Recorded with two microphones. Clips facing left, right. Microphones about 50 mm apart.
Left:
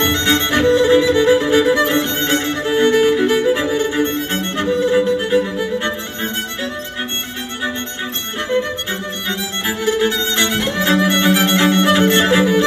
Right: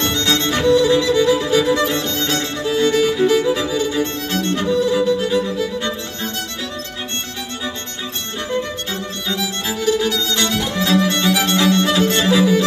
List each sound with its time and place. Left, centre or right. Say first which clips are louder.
0.0 s music: left 2 dB; left
8.5 s violin: left 4 dB; left